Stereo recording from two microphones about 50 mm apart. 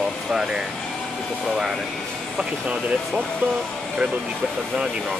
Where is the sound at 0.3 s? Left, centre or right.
Centre.